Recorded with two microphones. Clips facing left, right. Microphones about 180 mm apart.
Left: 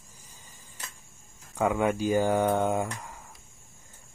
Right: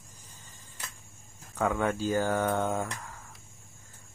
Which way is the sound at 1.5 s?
10° left (ahead or behind).